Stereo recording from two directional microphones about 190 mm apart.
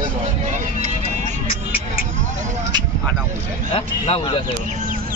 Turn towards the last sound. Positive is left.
turn(degrees=30)  # may be behind; listen again after turning